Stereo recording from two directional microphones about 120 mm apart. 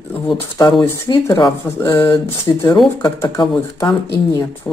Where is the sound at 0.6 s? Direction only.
35° left (ahead or behind).